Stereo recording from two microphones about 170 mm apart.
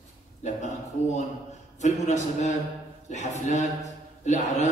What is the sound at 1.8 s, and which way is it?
A man's voice, 45° left (ahead or behind).